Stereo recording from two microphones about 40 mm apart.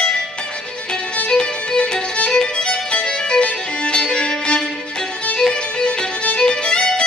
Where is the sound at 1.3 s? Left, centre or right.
Centre.